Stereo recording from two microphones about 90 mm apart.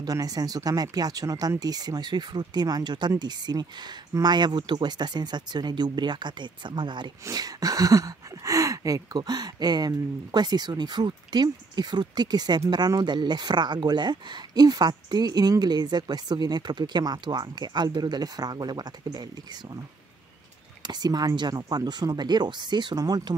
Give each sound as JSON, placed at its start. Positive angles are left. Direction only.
{"t": 0.0, "sound": "speech", "side_deg": -45}
{"t": 7.2, "sound": "speech", "side_deg": -45}
{"t": 20.8, "sound": "speech", "side_deg": -50}